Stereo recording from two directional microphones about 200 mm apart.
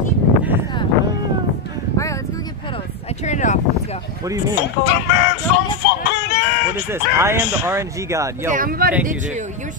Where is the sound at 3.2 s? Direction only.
35° left (ahead or behind).